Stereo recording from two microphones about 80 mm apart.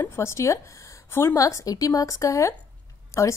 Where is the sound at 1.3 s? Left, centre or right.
Left.